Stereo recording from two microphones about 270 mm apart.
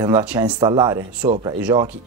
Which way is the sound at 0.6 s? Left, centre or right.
Centre.